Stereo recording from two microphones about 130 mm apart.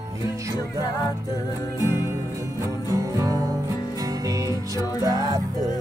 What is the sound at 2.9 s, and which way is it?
Music, 25° right (ahead or behind).